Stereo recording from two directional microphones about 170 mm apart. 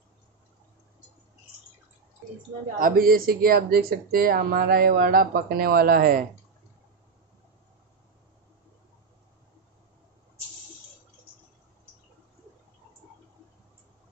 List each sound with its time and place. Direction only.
2.8 s speech: 60° right (ahead or behind)